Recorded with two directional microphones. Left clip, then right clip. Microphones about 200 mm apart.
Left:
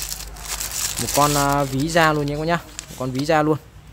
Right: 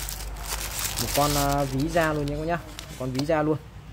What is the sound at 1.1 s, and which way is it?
Speech, 35° left (ahead or behind).